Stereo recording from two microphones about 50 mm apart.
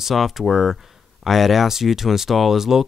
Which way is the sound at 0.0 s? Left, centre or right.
Centre.